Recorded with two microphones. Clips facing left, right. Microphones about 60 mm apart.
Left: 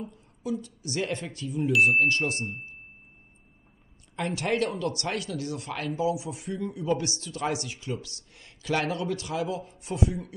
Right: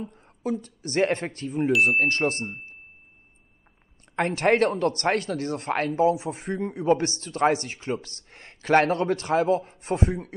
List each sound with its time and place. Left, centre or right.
0.0 s speech: right
4.1 s speech: right